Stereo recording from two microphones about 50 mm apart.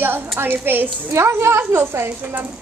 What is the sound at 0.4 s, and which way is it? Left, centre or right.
Speech, right.